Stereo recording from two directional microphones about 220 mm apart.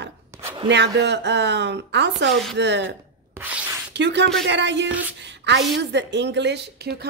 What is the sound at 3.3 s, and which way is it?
Writing, 5° right (ahead or behind).